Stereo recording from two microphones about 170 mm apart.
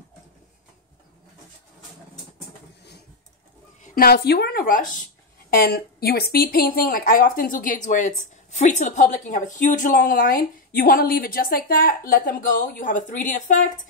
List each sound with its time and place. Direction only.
3.8 s a woman's voice: 60° left (ahead or behind)
5.5 s speech: 65° left (ahead or behind); by 13.7 s 50° left (ahead or behind)